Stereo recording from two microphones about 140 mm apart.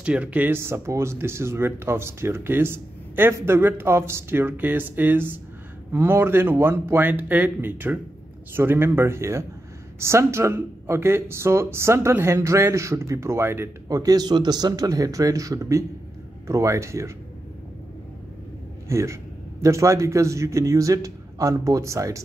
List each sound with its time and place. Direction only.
0.0 s speech: 10° right (ahead or behind)
18.9 s speech: 20° right (ahead or behind)